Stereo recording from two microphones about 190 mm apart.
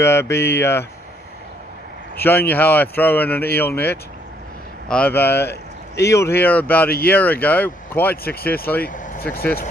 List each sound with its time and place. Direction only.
0.0 s speech: 15° left (ahead or behind)
2.1 s speech: 10° left (ahead or behind)
8.9 s speech: 45° left (ahead or behind)